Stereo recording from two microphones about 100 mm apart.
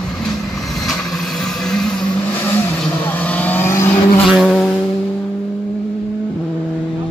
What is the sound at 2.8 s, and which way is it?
Vehicle, 15° left (ahead or behind).